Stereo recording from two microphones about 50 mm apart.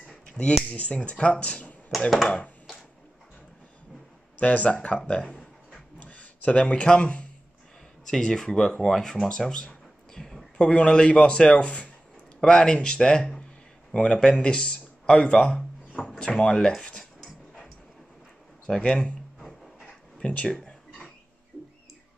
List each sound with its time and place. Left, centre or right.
0.3 s a sound: left
0.7 s speech: left
2.0 s speech: centre
4.4 s speech: left
5.7 s a sound: left
8.1 s speech: centre
9.5 s a sound: centre
10.7 s speech: centre
15.4 s a sound: centre
16.2 s speech: centre
17.0 s dog: centre
18.8 s speech: left
20.2 s speech: centre